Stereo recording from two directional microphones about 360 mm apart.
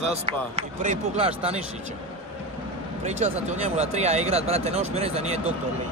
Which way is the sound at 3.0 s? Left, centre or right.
Centre.